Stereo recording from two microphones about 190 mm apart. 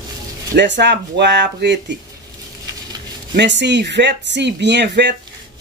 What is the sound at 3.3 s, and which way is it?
Speech, 65° right (ahead or behind).